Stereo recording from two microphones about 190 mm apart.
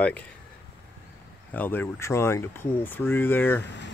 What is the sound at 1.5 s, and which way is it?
Speech, 10° left (ahead or behind).